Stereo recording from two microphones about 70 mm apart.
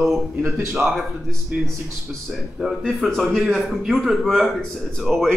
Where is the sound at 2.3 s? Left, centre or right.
Centre.